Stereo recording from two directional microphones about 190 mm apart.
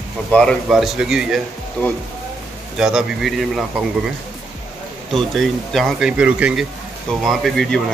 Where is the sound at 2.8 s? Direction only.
5° right (ahead or behind).